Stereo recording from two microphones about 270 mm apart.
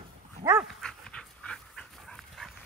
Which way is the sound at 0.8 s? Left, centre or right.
Centre.